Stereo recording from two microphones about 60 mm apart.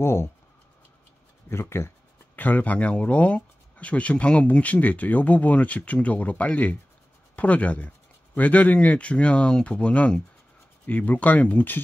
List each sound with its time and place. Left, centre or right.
0.0 s speech: left
1.5 s speech: left
2.3 s speech: left